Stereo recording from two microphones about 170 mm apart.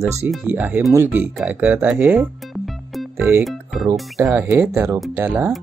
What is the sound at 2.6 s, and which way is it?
Music, centre (ahead or behind).